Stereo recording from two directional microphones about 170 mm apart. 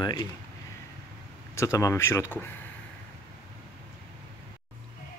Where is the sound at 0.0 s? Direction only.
25° left (ahead or behind).